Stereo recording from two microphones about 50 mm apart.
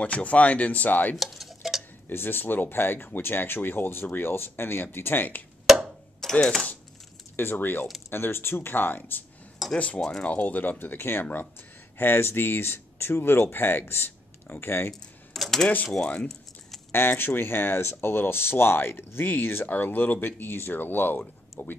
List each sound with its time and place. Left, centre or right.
0.0 s speech: left
1.1 s stir: centre
2.0 s speech: left
6.2 s typing: centre
7.3 s speech: left
9.6 s cutlery: centre
9.9 s speech: centre
10.2 s speech: left
15.3 s speech: centre
16.2 s a sound: centre
16.9 s speech: left